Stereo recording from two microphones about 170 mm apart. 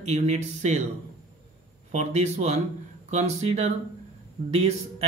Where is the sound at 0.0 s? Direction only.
40° right (ahead or behind).